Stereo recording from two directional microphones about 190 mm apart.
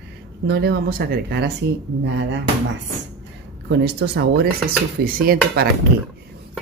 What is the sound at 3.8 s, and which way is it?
Speech, 60° right (ahead or behind).